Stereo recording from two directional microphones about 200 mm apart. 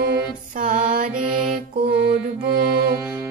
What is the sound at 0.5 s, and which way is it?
Music, 40° right (ahead or behind).